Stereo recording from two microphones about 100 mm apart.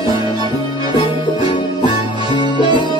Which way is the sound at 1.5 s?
55° left (ahead or behind).